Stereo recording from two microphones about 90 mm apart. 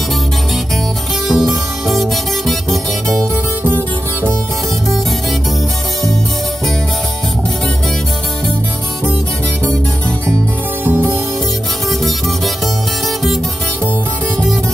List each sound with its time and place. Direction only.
1.3 s music: centre (ahead or behind)
3.6 s music: 25° right (ahead or behind)